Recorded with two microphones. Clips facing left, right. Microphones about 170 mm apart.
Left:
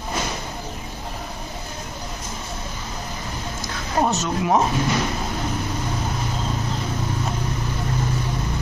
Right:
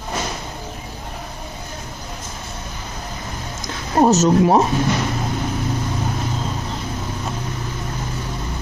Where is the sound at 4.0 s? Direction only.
35° right (ahead or behind).